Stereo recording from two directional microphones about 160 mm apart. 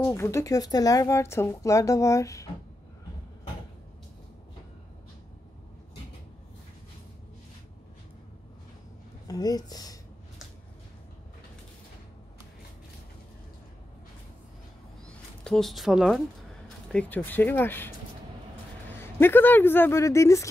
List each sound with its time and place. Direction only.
0.0 s speech: 20° left (ahead or behind)
9.3 s speech: 25° left (ahead or behind)
15.0 s speech: 5° left (ahead or behind)
16.9 s speech: 10° left (ahead or behind)
18.9 s speech: 15° left (ahead or behind)